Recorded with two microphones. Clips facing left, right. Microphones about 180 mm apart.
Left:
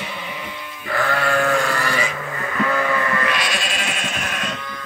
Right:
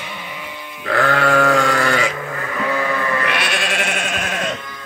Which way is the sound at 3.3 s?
65° right (ahead or behind).